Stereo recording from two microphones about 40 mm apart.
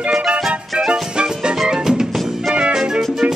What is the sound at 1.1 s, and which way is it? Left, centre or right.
Music, right.